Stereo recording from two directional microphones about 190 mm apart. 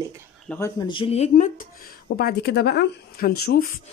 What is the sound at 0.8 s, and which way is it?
Speech, 25° left (ahead or behind).